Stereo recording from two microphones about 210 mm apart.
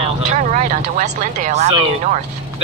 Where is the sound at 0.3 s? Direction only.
35° right (ahead or behind).